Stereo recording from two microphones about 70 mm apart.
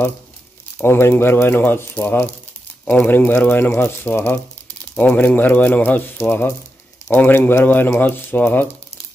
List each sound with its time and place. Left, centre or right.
0.8 s speech: left